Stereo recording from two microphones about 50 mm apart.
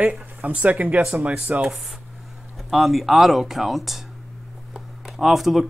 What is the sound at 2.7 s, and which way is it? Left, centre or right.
Speech, centre.